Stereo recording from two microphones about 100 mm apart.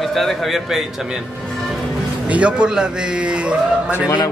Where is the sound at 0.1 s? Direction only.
Centre (ahead or behind).